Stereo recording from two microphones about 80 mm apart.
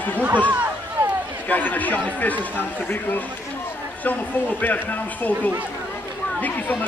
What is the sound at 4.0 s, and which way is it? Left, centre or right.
Speech, left.